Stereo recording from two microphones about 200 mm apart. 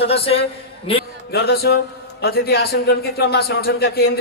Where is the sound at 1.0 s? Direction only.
55° left (ahead or behind).